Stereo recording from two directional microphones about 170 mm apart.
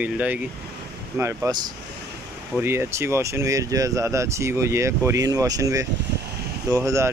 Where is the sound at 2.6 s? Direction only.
15° right (ahead or behind).